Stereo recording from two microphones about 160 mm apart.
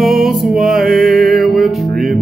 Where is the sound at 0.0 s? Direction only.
Centre (ahead or behind).